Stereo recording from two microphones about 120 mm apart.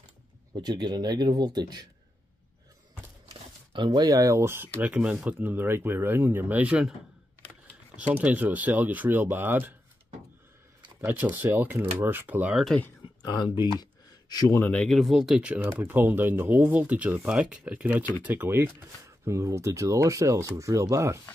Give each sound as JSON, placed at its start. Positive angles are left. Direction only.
{"t": 0.5, "sound": "a man's voice", "side_deg": -35}
{"t": 3.7, "sound": "speech", "side_deg": -40}
{"t": 7.9, "sound": "speech", "side_deg": -10}
{"t": 11.0, "sound": "speech", "side_deg": -15}
{"t": 13.0, "sound": "speech", "side_deg": 35}
{"t": 14.6, "sound": "speech", "side_deg": 10}
{"t": 15.0, "sound": "speech", "side_deg": 0}